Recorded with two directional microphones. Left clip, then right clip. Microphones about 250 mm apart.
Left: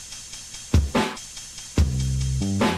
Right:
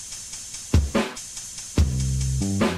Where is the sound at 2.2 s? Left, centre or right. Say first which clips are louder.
Left 1 dB; right.